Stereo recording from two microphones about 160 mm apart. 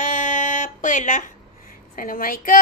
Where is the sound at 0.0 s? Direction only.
55° left (ahead or behind).